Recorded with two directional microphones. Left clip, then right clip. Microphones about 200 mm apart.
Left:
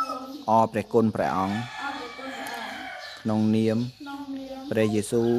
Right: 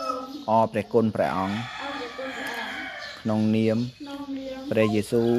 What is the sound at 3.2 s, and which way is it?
Speech, 15° left (ahead or behind).